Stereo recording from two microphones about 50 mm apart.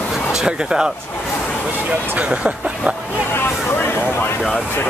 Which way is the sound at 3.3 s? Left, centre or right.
Left.